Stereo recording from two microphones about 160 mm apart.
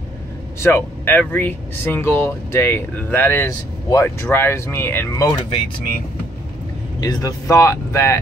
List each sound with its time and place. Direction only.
0.6 s speech: 15° left (ahead or behind)
7.0 s speech: 25° left (ahead or behind)